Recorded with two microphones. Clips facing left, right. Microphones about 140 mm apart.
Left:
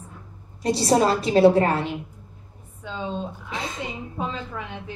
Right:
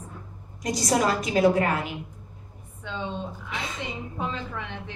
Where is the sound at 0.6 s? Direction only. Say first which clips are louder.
Left 5 dB; 30° left (ahead or behind).